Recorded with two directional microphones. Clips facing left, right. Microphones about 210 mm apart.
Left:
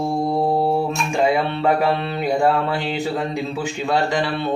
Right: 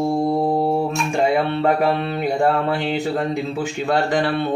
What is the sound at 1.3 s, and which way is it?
Mantra, 50° right (ahead or behind).